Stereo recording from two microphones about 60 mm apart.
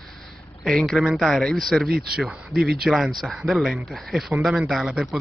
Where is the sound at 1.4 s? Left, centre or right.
Centre.